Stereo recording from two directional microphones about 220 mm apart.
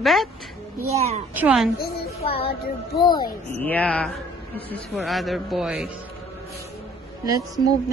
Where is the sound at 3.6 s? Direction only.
5° left (ahead or behind).